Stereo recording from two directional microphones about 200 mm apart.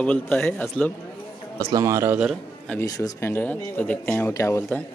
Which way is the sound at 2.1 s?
Centre (ahead or behind).